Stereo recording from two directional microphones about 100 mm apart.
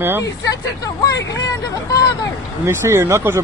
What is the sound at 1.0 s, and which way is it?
Speech, 35° left (ahead or behind).